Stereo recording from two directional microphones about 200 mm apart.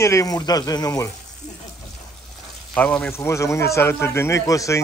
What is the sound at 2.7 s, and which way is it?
Speech, 5° left (ahead or behind).